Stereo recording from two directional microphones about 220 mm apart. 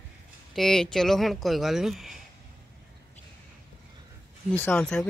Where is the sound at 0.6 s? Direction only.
Centre (ahead or behind).